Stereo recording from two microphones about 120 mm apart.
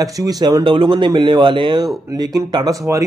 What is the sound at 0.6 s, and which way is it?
Speech, 45° right (ahead or behind).